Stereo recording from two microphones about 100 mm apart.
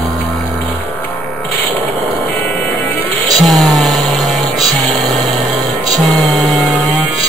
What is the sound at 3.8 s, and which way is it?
Music, centre (ahead or behind).